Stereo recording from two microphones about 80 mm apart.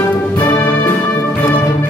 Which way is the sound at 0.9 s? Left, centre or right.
Left.